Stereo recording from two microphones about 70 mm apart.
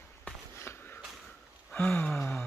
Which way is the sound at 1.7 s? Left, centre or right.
Centre.